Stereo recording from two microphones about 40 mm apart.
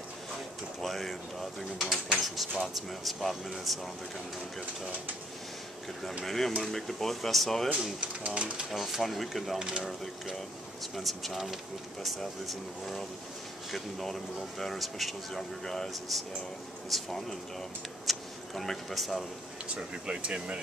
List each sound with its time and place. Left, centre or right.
0.7 s speech: centre
6.2 s speech: centre
8.4 s speech: right
8.7 s speech: centre
9.6 s speech: centre
11.0 s speech: centre
15.6 s speech: centre
15.9 s speech: centre
19.7 s speech: right